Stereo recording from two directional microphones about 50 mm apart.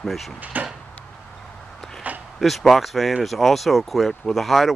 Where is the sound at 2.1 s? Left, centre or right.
Right.